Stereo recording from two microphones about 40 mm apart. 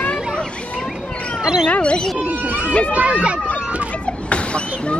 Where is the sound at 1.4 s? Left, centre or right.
Centre.